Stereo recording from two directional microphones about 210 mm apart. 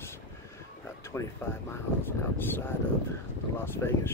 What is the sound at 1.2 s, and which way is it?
Speech, 15° left (ahead or behind).